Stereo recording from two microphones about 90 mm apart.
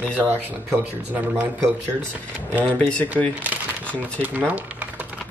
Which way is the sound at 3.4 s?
15° right (ahead or behind).